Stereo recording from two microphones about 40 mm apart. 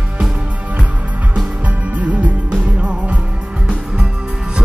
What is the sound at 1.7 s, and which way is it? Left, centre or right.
Music, right.